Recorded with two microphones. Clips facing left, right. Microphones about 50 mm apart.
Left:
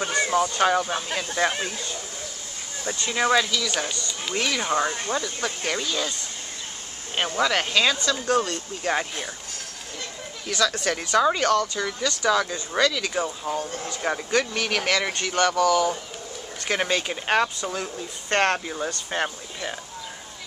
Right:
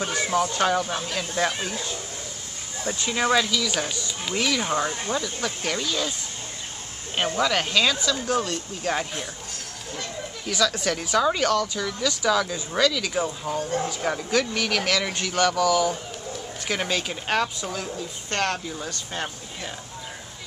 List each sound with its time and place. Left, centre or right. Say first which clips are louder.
0.1 s speech: left 2 dB; centre
2.8 s speech: even; centre
4.3 s speech: even; centre
7.2 s speech: even; centre
10.5 s speech: even; centre
12.0 s speech: even; centre
18.3 s speech: left 4 dB; left